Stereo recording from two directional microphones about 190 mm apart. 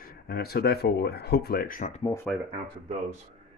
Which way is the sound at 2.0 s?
15° left (ahead or behind).